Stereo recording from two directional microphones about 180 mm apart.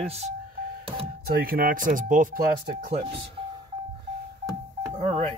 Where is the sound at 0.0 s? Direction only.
35° right (ahead or behind).